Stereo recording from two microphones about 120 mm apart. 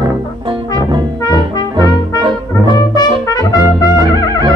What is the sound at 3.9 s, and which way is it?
Music, 30° right (ahead or behind).